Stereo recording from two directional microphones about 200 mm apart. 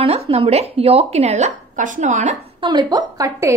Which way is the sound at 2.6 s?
20° right (ahead or behind).